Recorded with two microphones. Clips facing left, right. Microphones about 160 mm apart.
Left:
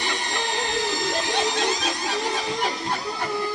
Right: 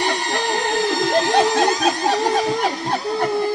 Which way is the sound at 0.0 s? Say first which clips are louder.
Right 7 dB; 60° right (ahead or behind).